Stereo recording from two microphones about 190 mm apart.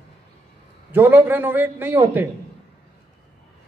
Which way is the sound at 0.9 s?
10° right (ahead or behind).